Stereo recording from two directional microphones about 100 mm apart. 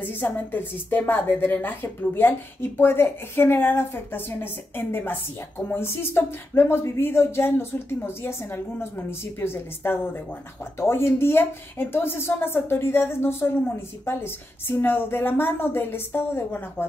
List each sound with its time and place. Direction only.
0.0 s a woman's voice: 20° left (ahead or behind)